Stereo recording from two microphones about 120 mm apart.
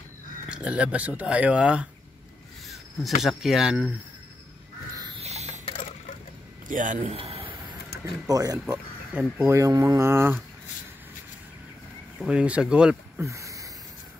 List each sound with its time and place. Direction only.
0.5 s speech: 10° right (ahead or behind)
3.2 s speech: centre (ahead or behind)
5.1 s a sound: 65° right (ahead or behind)
6.7 s a man's voice: 90° right
7.2 s a sound: 50° right (ahead or behind)
8.0 s speech: 30° right (ahead or behind)
8.7 s speech: 10° right (ahead or behind)
9.5 s speech: 25° right (ahead or behind)
12.2 s speech: 10° right (ahead or behind)
13.2 s a sound: 25° right (ahead or behind)